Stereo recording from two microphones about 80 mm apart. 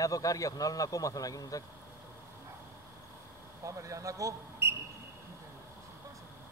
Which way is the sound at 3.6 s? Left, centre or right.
Right.